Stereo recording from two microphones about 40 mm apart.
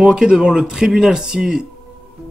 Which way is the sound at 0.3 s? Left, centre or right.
Right.